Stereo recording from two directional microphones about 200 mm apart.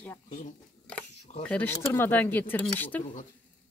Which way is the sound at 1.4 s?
10° left (ahead or behind).